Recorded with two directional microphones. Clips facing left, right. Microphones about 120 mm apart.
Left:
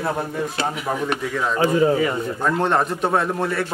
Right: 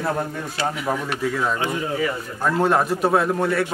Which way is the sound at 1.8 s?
35° left (ahead or behind).